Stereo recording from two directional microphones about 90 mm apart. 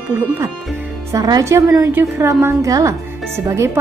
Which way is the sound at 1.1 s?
45° right (ahead or behind).